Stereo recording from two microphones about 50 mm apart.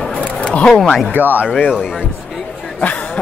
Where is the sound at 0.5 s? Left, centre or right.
Left.